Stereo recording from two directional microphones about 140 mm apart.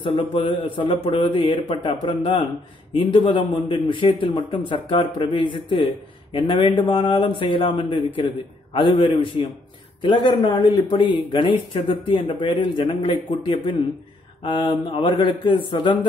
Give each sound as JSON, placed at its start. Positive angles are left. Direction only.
{"t": 0.0, "sound": "speech", "side_deg": 40}